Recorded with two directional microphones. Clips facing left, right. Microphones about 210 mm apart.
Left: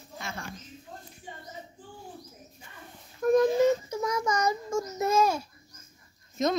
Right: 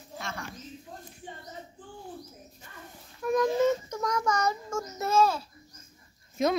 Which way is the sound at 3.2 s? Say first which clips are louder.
Left 4 dB; 30° left (ahead or behind).